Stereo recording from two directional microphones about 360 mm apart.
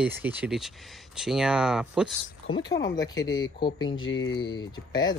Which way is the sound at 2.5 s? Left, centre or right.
Centre.